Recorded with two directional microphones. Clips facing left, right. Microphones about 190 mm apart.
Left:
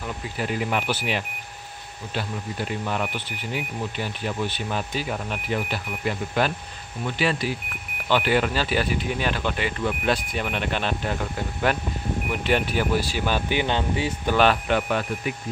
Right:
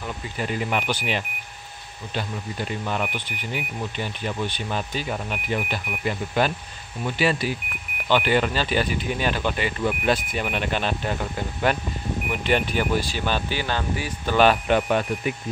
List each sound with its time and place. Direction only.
0.0 s speech: 5° left (ahead or behind); by 14.1 s 25° left (ahead or behind)
14.5 s speech: 20° right (ahead or behind)